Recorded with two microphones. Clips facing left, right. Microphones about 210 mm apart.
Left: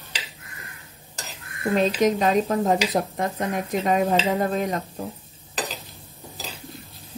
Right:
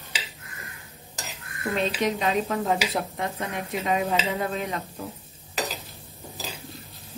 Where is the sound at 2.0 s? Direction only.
45° left (ahead or behind).